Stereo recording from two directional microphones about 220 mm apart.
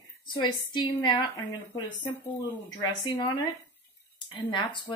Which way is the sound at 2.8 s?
20° left (ahead or behind).